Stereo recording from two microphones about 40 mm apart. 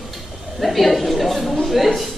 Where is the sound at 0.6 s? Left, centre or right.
Centre.